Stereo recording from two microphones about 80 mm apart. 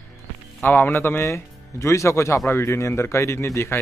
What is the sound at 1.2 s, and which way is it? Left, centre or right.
A man's voice, left.